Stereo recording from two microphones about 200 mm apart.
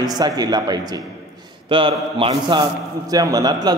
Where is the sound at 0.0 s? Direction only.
20° right (ahead or behind).